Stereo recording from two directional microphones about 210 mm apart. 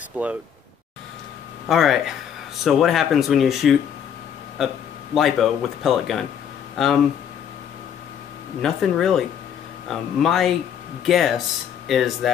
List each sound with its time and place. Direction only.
0.2 s speech: 5° right (ahead or behind)
1.7 s speech: centre (ahead or behind)
8.6 s speech: centre (ahead or behind)